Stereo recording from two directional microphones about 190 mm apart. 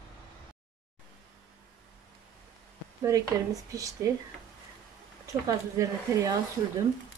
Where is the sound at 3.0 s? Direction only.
15° right (ahead or behind).